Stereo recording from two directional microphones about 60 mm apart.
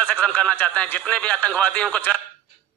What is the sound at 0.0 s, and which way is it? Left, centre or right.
Speech, left.